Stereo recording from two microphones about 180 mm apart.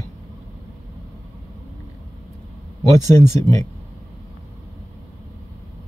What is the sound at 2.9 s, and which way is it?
Speech, 15° left (ahead or behind).